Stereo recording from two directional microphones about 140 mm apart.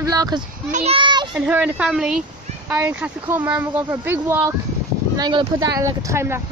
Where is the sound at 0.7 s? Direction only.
55° right (ahead or behind).